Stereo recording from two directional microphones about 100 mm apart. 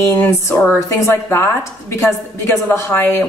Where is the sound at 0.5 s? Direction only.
10° left (ahead or behind).